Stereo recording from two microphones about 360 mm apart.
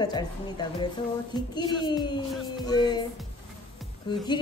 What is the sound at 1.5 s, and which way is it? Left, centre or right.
A woman's voice, centre.